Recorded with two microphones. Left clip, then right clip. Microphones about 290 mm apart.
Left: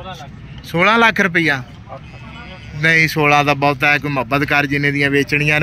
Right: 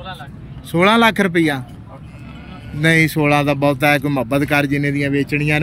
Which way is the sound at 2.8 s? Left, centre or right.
Centre.